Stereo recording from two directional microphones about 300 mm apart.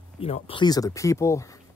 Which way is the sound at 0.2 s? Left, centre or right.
Centre.